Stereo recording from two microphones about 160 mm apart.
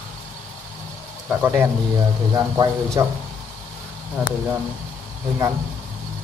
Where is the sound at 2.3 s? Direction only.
25° right (ahead or behind).